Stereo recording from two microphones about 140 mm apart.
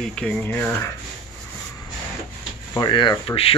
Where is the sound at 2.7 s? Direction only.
30° left (ahead or behind).